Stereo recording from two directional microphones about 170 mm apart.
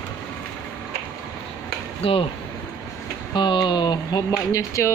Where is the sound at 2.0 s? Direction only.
35° left (ahead or behind).